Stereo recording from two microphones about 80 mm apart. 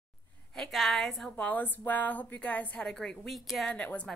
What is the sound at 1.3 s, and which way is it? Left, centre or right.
A woman's voice, left.